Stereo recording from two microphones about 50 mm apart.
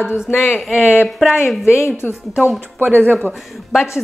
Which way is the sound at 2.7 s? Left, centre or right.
Right.